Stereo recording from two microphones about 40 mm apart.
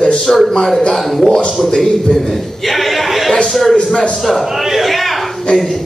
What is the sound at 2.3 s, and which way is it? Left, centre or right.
Chuckle, centre.